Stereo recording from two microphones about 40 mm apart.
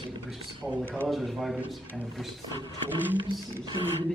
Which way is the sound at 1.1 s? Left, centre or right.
Centre.